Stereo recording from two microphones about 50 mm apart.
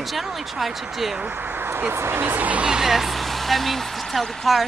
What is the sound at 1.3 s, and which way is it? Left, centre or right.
Speech, right.